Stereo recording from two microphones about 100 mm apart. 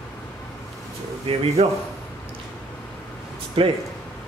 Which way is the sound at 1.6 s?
90° right.